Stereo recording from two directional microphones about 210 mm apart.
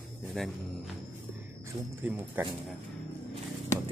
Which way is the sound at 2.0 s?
10° right (ahead or behind).